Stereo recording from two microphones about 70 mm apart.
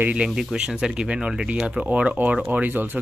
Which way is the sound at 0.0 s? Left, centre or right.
Centre.